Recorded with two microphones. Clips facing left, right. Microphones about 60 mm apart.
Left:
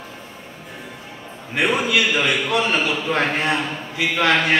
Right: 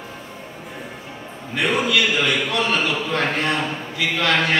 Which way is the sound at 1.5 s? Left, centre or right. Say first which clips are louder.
Left 1 dB; centre.